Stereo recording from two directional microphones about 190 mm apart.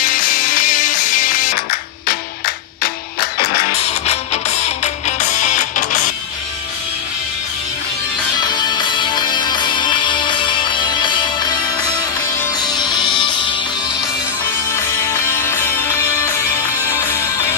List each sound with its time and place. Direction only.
0.0 s music: 45° left (ahead or behind)
4.0 s music: 35° left (ahead or behind)
8.4 s music: 20° left (ahead or behind)
14.7 s music: 15° left (ahead or behind)